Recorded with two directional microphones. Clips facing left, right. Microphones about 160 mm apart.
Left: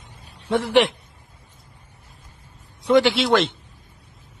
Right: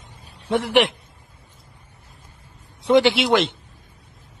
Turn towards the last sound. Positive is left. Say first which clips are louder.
# even
turn(degrees=-20)  # may be behind; listen again after turning